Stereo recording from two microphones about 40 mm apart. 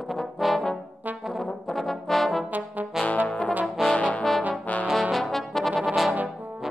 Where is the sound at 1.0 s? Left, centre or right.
Right.